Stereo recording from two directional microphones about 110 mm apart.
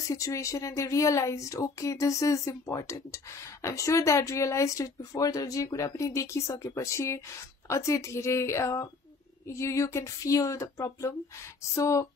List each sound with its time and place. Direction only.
0.0 s speech: 30° left (ahead or behind)